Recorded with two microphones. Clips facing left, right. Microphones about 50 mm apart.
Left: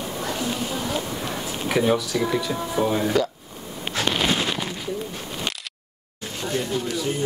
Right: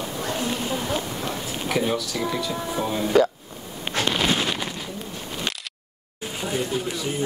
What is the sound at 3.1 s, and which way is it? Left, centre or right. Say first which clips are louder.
Speech: right 8 dB; right.